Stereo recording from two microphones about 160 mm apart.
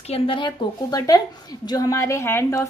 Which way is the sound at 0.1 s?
35° left (ahead or behind).